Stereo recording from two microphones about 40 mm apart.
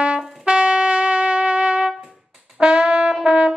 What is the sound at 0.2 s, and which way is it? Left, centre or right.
Trumpet, right.